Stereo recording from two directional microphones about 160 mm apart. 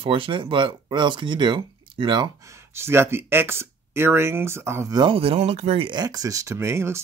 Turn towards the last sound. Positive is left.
turn(degrees=-15)  # may be behind; listen again after turning